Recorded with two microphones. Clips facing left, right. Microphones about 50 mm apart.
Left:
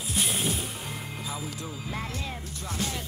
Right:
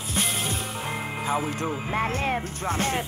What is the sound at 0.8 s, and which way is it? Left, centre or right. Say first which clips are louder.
Speech: right 7 dB; right.